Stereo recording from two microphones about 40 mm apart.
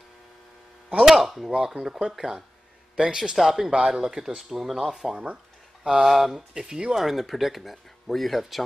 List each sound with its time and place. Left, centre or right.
0.9 s chop: centre
1.2 s chop: centre
1.5 s speech: centre
5.1 s speech: right
6.0 s speech: centre
6.5 s speech: centre
6.9 s speech: centre